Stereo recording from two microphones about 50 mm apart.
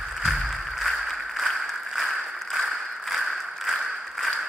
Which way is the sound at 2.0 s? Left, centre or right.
Centre.